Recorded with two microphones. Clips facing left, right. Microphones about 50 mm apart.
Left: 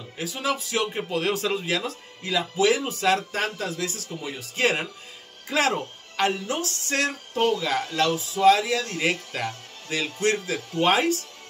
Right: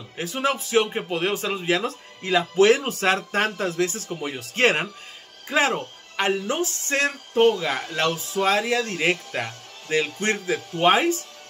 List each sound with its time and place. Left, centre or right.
0.2 s speech: right
5.5 s speech: right